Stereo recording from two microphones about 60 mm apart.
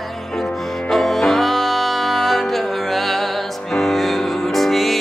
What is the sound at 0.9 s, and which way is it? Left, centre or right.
Music, centre.